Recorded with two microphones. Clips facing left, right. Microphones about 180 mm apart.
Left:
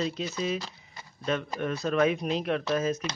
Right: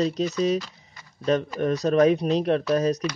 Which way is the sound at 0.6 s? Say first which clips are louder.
Left 1 dB; 30° left (ahead or behind).